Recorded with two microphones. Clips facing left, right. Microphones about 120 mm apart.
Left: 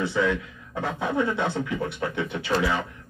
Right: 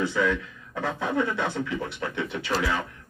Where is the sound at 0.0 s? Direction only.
25° left (ahead or behind).